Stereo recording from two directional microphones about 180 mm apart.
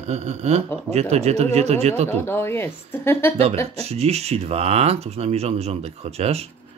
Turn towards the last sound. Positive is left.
turn(degrees=-35)  # may be behind; listen again after turning